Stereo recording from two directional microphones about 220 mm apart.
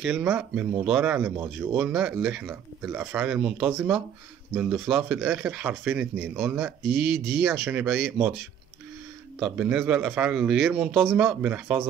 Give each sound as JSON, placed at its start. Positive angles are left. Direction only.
{"t": 0.0, "sound": "speech", "side_deg": -5}
{"t": 9.4, "sound": "speech", "side_deg": -5}